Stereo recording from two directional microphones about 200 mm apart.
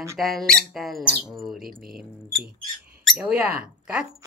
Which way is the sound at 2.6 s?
45° right (ahead or behind).